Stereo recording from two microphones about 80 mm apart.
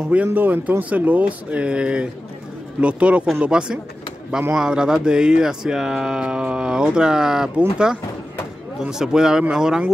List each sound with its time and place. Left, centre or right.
0.1 s speech: right